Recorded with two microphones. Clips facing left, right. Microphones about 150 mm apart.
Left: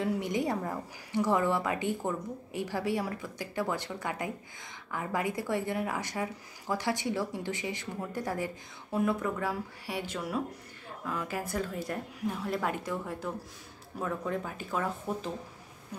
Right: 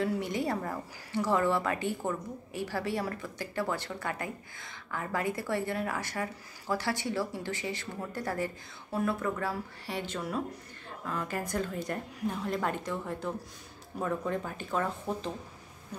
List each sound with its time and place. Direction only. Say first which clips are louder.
0.0 s a woman's voice: even; 15° left (ahead or behind)